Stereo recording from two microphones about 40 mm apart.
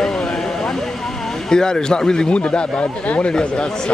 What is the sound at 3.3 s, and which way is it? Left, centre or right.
Speech, left.